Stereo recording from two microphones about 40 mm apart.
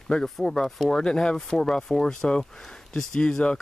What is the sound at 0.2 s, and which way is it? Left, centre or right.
Speech, centre.